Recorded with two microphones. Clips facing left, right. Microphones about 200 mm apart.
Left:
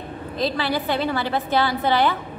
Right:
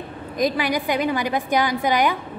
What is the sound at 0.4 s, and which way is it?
A woman's voice, 15° right (ahead or behind).